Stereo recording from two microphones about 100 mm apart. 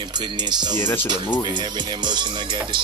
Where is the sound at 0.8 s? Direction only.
20° left (ahead or behind).